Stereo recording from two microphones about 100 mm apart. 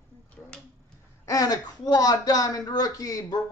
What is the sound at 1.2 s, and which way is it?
Speech, 35° left (ahead or behind).